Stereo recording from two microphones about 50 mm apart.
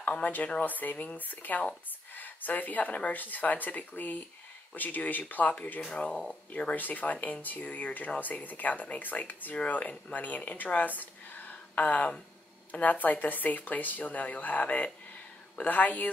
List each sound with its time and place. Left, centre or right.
0.2 s speech: left
5.9 s speech: centre
6.7 s a woman's voice: left